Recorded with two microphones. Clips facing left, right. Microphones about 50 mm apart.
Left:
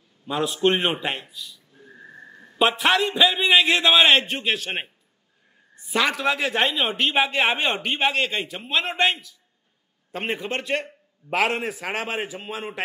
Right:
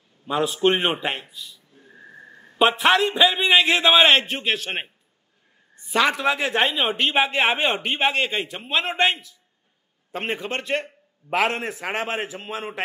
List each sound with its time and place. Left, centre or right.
0.3 s speech: centre
2.2 s a sound: centre
2.6 s speech: centre